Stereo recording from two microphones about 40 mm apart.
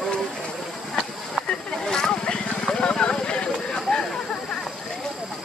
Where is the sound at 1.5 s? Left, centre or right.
Centre.